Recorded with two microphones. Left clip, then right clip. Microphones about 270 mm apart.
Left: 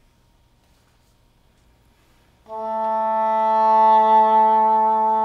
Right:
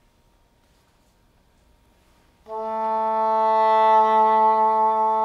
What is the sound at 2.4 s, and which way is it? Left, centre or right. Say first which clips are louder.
Music: left 2 dB; centre.